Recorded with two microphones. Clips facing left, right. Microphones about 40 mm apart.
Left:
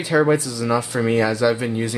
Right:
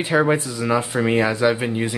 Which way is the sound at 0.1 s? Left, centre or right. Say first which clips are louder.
Left 2 dB; right.